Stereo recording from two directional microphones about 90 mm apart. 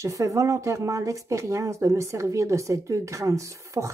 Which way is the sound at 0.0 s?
35° right (ahead or behind).